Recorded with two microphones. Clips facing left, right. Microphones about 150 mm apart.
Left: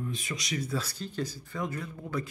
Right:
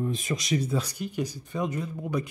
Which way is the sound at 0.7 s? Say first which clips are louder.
Right 4 dB; 15° right (ahead or behind).